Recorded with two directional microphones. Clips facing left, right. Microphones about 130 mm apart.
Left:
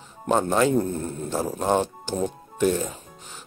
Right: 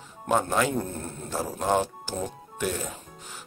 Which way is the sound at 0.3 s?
25° left (ahead or behind).